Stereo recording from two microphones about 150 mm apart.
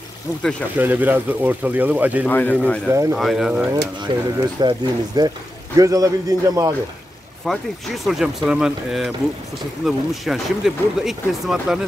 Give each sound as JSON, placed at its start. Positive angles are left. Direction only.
{"t": 0.4, "sound": "speech", "side_deg": 5}
{"t": 0.7, "sound": "speech", "side_deg": -10}
{"t": 2.2, "sound": "speech", "side_deg": 10}
{"t": 2.9, "sound": "speech", "side_deg": -20}
{"t": 3.2, "sound": "speech", "side_deg": 0}
{"t": 4.0, "sound": "speech", "side_deg": -30}
{"t": 7.4, "sound": "speech", "side_deg": 0}